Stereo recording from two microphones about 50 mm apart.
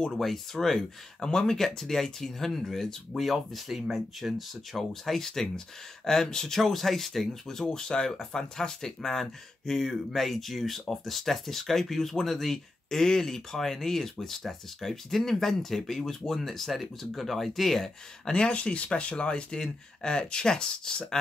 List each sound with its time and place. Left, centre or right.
0.2 s speech: centre
18.3 s speech: left